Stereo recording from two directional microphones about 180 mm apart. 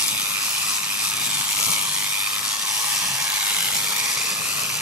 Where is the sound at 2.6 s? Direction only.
20° right (ahead or behind).